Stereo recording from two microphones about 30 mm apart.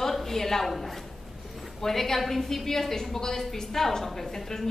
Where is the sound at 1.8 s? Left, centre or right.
Centre.